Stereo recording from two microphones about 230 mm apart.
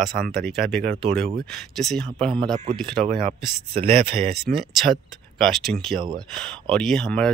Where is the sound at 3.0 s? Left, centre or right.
Right.